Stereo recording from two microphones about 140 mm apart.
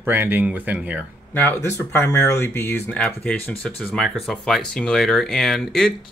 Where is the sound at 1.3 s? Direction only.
15° left (ahead or behind).